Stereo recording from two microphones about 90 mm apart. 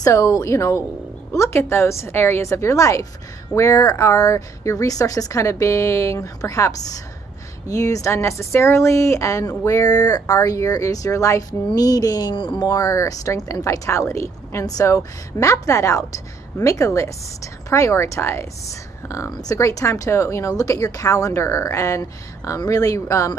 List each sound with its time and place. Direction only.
0.0 s speech: 40° left (ahead or behind); by 12.5 s 60° left (ahead or behind)
12.5 s speech: 40° left (ahead or behind)